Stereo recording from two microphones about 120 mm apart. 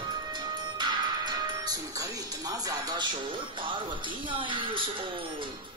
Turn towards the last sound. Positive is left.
turn(degrees=-45)  # may be behind; listen again after turning